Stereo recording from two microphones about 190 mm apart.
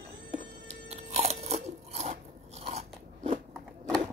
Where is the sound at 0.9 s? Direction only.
35° right (ahead or behind).